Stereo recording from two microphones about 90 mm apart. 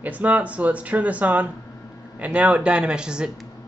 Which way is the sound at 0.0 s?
15° right (ahead or behind).